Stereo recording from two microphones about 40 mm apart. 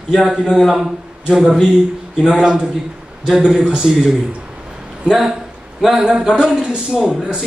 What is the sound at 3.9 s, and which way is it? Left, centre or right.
Speech, centre.